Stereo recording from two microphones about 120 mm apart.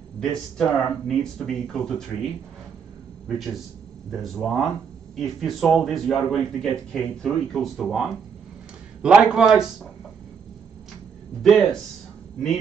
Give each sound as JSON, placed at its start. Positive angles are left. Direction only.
{"t": 0.2, "sound": "speech", "side_deg": 5}
{"t": 3.3, "sound": "a man's voice", "side_deg": 0}
{"t": 11.4, "sound": "speech", "side_deg": 5}